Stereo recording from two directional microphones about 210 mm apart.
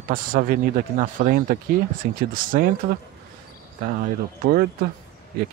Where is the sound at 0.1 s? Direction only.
40° right (ahead or behind).